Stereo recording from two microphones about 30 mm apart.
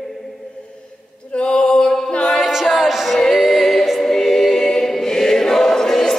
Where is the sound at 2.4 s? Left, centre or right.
Centre.